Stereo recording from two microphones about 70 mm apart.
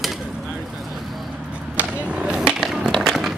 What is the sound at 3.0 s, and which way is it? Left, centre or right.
Run, centre.